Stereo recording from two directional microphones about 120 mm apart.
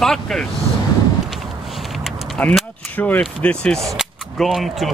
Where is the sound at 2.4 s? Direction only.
15° left (ahead or behind).